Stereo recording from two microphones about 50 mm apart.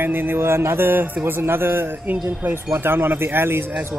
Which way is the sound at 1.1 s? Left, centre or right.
Right.